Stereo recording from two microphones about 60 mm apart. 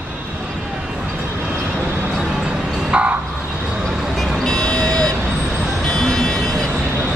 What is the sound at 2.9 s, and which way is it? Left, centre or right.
Vehicle, right.